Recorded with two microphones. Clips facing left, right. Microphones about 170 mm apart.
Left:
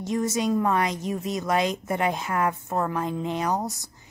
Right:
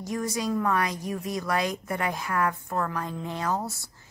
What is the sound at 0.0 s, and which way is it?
Speech, 25° left (ahead or behind).